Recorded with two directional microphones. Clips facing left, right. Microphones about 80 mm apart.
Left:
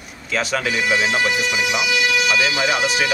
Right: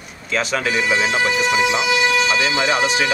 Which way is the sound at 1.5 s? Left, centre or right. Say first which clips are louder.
Right 3 dB; right.